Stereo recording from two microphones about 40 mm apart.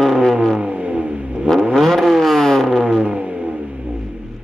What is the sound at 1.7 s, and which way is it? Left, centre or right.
Vehicle, centre.